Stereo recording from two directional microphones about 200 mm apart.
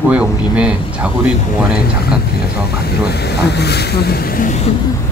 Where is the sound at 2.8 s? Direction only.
55° left (ahead or behind).